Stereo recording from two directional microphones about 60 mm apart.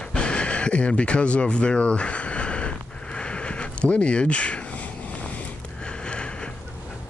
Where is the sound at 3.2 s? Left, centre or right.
Centre.